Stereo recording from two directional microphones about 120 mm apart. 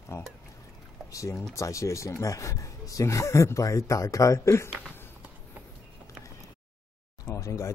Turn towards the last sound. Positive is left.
turn(degrees=25)  # may be behind; listen again after turning